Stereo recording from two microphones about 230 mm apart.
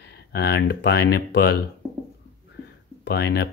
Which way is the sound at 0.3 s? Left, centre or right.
Left.